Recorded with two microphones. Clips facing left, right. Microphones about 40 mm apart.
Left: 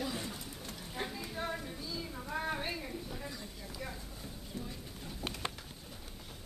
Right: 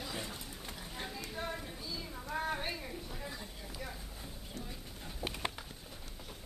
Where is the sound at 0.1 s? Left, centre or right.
Centre.